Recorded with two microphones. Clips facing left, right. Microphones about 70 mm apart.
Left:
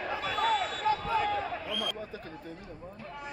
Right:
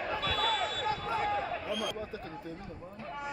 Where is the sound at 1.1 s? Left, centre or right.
Left.